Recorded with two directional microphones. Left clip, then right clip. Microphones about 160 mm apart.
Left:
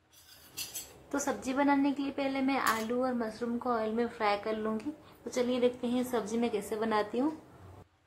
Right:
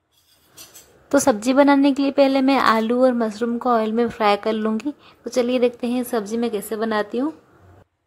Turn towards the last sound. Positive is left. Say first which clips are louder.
# right 9 dB
turn(degrees=-30)  # may be behind; listen again after turning